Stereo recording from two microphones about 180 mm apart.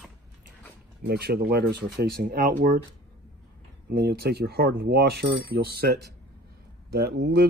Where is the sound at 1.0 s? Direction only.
60° right (ahead or behind).